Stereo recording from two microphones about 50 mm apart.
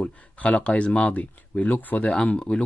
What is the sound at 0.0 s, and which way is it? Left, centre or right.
Speech, left.